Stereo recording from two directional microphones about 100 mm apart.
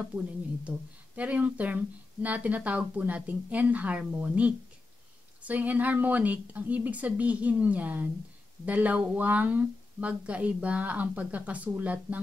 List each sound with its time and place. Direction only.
0.7 s speech: 15° right (ahead or behind)